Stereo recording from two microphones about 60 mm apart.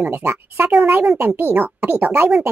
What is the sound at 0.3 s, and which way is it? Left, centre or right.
A child's voice, right.